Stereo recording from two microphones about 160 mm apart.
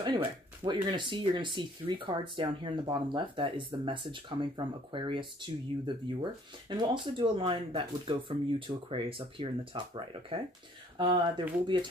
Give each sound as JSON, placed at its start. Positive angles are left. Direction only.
{"t": 0.7, "sound": "speech", "side_deg": -30}